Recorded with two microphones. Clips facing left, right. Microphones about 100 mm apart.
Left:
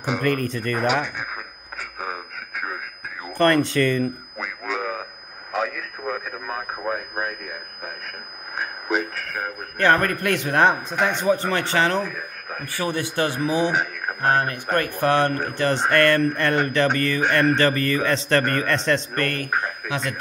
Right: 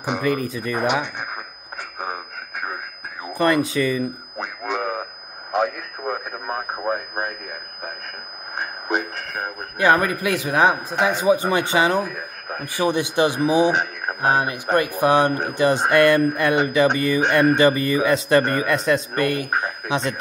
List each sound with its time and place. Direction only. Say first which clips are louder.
0.2 s speech: right 1 dB; 5° right (ahead or behind)
2.0 s radio: right 2 dB; 25° right (ahead or behind)
3.3 s speech: left 1 dB; 5° right (ahead or behind)
5.9 s speech: right 1 dB; 20° right (ahead or behind)
9.1 s speech: even; 15° right (ahead or behind)